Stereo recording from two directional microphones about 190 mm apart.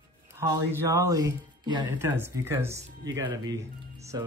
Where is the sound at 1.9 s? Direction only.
10° right (ahead or behind).